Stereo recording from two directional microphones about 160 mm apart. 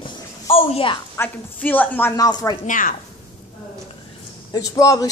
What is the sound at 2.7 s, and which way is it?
Speech, 60° left (ahead or behind).